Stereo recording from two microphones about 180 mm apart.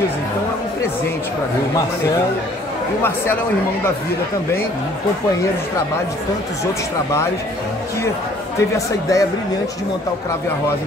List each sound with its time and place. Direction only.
8.5 s speech: 20° left (ahead or behind)